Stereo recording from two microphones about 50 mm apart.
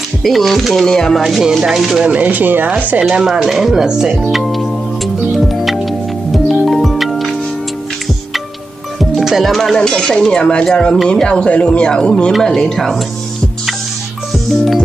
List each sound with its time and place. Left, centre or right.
0.2 s speech: centre
1.2 s speech: centre
2.0 s speech: right
2.4 s speech: right
3.1 s speech: centre
4.3 s music: centre
9.2 s speech: centre
9.8 s speech: centre